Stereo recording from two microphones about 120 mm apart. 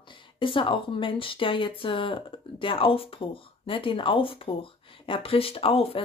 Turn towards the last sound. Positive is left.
turn(degrees=50)  # may be behind; listen again after turning